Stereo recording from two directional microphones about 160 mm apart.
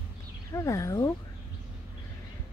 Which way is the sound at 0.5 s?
20° left (ahead or behind).